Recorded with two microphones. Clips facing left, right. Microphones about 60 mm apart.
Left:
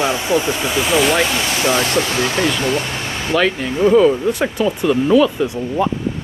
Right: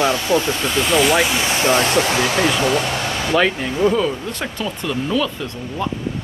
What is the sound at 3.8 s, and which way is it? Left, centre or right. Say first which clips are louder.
Speech: left 6 dB; centre.